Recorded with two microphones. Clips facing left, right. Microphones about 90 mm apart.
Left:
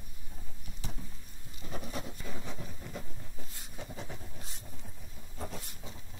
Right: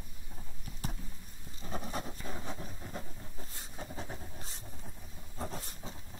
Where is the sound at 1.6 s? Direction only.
35° right (ahead or behind).